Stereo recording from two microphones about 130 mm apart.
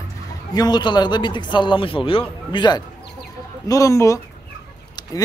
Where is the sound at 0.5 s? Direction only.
30° left (ahead or behind).